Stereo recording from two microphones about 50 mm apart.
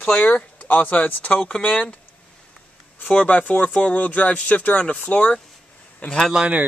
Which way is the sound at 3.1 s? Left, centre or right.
Left.